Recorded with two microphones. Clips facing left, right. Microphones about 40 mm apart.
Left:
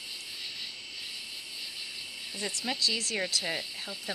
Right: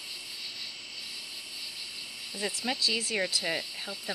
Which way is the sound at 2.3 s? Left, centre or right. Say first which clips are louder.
Right 2 dB; centre.